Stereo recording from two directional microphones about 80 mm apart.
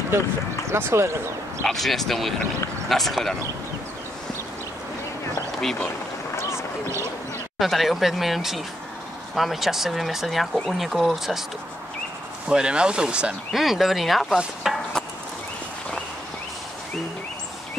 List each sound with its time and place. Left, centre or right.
0.1 s speech: right
1.6 s speech: centre
7.5 s speech: centre
12.4 s speech: centre
14.4 s chopping: centre